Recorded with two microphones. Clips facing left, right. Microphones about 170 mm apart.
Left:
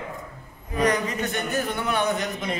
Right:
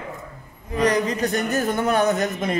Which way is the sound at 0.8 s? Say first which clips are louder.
Right 4 dB; 35° right (ahead or behind).